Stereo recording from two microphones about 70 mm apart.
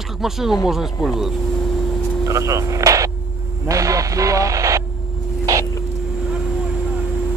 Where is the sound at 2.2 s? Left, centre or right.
Right.